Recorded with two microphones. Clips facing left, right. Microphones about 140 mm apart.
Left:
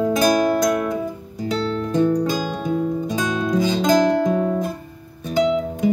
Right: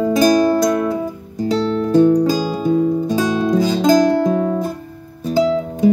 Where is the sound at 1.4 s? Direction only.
35° right (ahead or behind).